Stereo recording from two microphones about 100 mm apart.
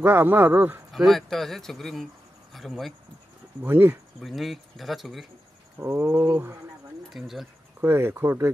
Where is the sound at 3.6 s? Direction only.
20° right (ahead or behind).